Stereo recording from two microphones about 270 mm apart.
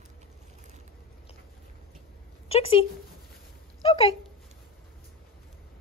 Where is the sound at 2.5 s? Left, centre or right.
Left.